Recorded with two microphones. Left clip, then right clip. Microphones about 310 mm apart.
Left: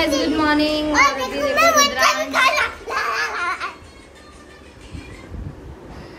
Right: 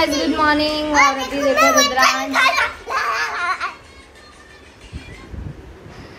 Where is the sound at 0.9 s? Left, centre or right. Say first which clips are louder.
Right 3 dB; centre.